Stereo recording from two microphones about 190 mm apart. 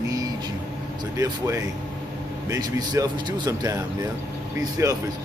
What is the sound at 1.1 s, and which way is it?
A man's voice, 15° right (ahead or behind).